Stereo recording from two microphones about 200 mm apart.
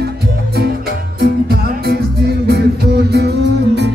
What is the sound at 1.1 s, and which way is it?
Music, 50° right (ahead or behind).